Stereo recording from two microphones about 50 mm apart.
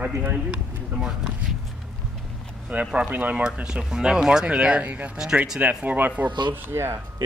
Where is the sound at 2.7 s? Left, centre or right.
Right.